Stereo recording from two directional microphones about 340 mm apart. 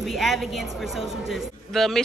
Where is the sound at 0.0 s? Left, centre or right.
Centre.